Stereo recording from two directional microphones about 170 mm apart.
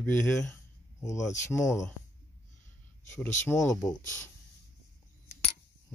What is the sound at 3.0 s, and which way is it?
Speech, 15° left (ahead or behind).